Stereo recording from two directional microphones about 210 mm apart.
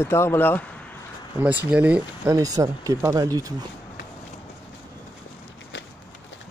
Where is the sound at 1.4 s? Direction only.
10° right (ahead or behind).